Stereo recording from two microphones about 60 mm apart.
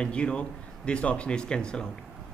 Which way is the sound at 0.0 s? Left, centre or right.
Centre.